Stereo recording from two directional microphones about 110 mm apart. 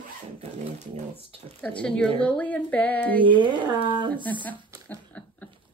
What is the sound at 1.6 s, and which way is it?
Speech, 10° left (ahead or behind).